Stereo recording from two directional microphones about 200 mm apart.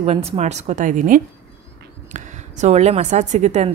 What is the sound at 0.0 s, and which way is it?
A woman's voice, 30° right (ahead or behind).